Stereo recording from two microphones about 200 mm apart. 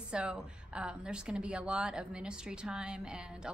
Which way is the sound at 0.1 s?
5° right (ahead or behind).